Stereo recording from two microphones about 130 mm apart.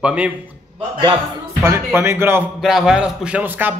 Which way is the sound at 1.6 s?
20° right (ahead or behind).